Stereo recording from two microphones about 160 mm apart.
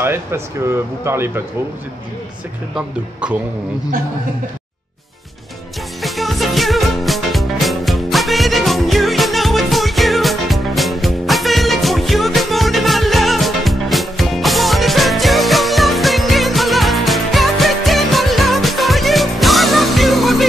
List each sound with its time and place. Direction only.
0.0 s speech: 15° right (ahead or behind)
6.0 s music: centre (ahead or behind)